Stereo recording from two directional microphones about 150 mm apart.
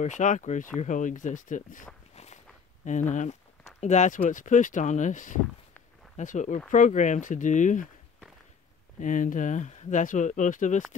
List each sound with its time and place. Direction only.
0.0 s speech: 55° left (ahead or behind)
9.0 s speech: 60° left (ahead or behind)